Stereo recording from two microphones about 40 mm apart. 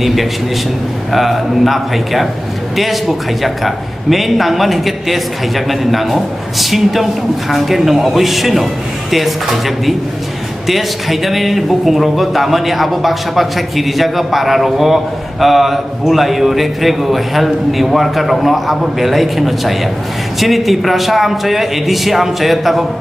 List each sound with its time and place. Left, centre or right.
0.0 s a man's voice: centre